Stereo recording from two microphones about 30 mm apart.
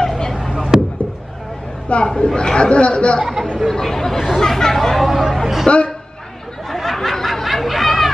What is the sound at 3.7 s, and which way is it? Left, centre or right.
Speech, centre.